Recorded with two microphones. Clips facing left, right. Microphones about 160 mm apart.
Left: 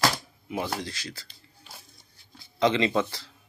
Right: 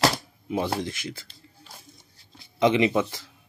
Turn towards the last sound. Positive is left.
turn(degrees=-15)  # may be behind; listen again after turning